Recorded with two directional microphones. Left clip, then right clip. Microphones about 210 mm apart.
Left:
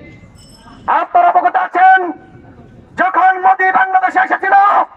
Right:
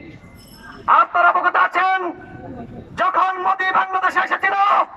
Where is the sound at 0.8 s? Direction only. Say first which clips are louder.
Left 3 dB; 35° left (ahead or behind).